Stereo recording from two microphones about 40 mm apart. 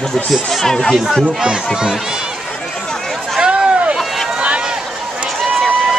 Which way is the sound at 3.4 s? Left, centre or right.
Right.